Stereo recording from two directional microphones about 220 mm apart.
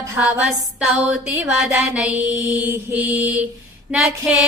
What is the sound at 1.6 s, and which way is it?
Mantra, 5° right (ahead or behind).